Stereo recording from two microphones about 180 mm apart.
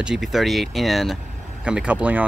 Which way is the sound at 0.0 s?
Centre (ahead or behind).